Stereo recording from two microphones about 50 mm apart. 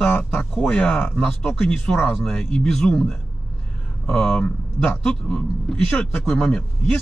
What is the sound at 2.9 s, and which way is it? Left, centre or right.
A man's voice, left.